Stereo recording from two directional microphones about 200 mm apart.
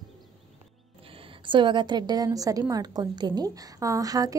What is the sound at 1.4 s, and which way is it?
A woman's voice, 25° right (ahead or behind).